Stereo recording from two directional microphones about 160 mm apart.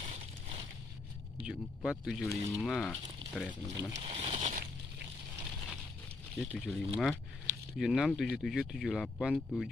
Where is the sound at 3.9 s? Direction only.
35° right (ahead or behind).